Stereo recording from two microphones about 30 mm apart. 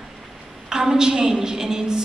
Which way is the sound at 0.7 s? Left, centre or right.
Right.